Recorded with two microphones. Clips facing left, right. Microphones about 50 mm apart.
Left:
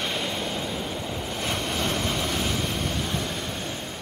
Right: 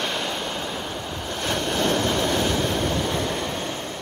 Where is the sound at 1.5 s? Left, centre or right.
Right.